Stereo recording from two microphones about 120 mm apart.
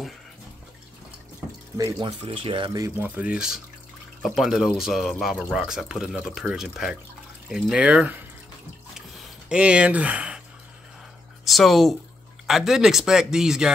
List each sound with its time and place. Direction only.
1.8 s speech: 30° right (ahead or behind)
2.0 s speech: 55° right (ahead or behind)
3.0 s speech: 10° right (ahead or behind)
9.5 s speech: 10° right (ahead or behind)
11.4 s speech: centre (ahead or behind)